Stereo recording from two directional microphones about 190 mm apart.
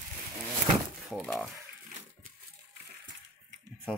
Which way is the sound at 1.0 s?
Centre (ahead or behind).